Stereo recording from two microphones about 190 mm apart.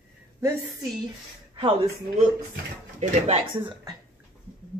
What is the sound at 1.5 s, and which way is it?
Speech, 25° right (ahead or behind).